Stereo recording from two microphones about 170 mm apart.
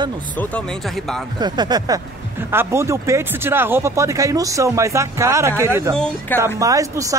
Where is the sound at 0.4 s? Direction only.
5° left (ahead or behind).